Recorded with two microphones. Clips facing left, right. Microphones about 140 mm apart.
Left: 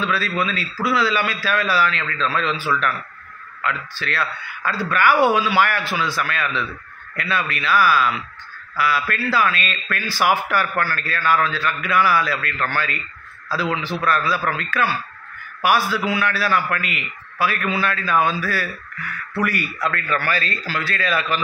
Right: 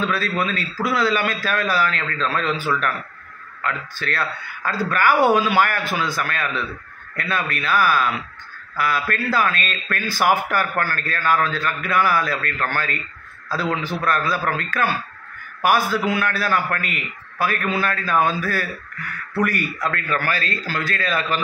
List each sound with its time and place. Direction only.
0.0 s a man's voice: 45° right (ahead or behind)
13.7 s a man's voice: 45° right (ahead or behind)